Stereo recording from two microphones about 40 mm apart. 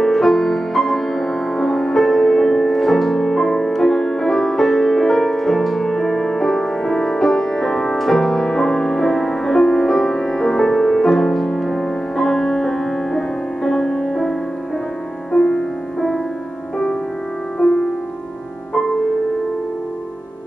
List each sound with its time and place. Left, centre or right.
0.0 s music: centre
15.3 s music: centre